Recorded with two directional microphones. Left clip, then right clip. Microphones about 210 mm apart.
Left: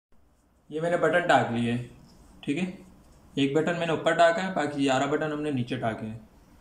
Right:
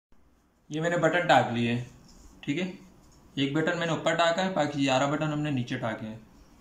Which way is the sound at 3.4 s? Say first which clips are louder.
Left 2 dB; 15° left (ahead or behind).